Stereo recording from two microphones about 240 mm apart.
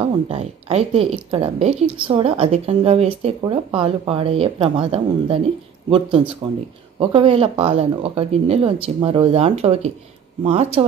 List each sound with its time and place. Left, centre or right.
0.0 s speech: right